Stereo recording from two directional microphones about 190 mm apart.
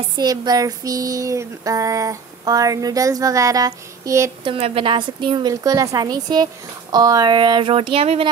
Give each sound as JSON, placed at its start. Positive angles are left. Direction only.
{"t": 0.2, "sound": "female singing", "side_deg": -20}
{"t": 4.5, "sound": "a woman's voice", "side_deg": -30}